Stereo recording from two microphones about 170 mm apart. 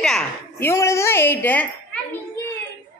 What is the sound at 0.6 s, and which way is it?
A woman's voice, 15° left (ahead or behind).